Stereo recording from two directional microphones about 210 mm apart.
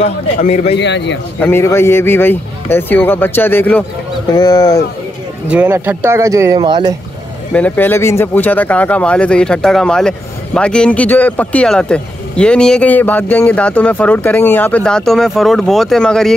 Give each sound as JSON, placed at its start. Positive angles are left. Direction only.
{"t": 0.0, "sound": "speech", "side_deg": 30}
{"t": 0.7, "sound": "a man's voice", "side_deg": 55}
{"t": 1.4, "sound": "a man's voice", "side_deg": 10}
{"t": 5.5, "sound": "speech", "side_deg": -10}
{"t": 7.5, "sound": "speech", "side_deg": 5}